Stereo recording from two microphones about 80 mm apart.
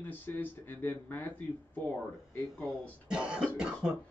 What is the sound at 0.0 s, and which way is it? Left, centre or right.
Speech, left.